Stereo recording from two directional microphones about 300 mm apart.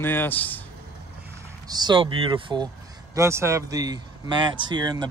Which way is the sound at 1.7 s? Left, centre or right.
Centre.